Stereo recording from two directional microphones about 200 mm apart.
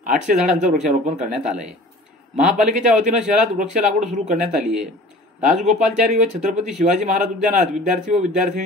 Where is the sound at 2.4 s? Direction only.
40° right (ahead or behind).